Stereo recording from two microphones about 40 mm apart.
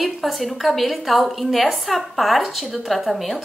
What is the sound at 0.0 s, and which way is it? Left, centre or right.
A woman's voice, centre.